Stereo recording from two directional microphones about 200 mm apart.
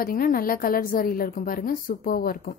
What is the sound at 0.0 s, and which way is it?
A woman's voice, 45° left (ahead or behind).